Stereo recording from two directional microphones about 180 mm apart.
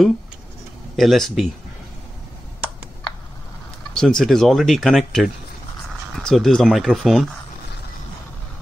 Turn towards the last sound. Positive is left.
turn(degrees=0)  # may be behind; listen again after turning